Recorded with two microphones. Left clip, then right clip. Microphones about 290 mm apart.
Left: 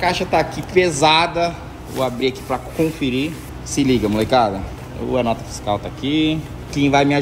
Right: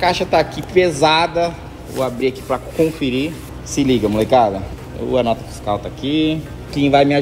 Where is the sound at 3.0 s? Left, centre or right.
Right.